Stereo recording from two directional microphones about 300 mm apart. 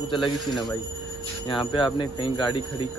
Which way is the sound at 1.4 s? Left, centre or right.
Centre.